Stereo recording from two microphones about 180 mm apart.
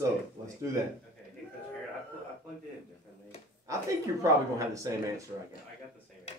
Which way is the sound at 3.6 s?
15° right (ahead or behind).